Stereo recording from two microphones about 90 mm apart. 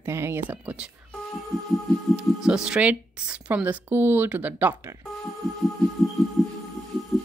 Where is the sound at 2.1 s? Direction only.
5° right (ahead or behind).